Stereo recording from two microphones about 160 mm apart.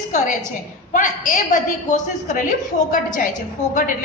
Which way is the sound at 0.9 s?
55° left (ahead or behind).